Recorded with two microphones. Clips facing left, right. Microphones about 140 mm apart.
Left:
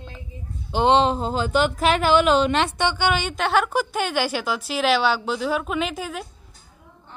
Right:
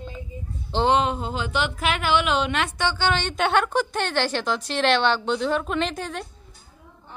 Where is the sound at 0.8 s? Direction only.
30° left (ahead or behind).